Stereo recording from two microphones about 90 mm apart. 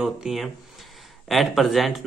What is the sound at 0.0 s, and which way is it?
A man's voice, 5° right (ahead or behind).